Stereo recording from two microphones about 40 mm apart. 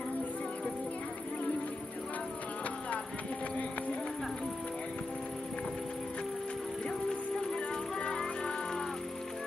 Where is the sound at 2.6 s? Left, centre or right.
Left.